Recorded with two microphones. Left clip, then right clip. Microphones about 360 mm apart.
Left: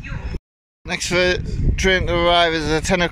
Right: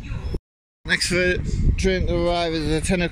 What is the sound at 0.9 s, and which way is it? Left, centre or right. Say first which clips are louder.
Speech: left 2 dB; centre.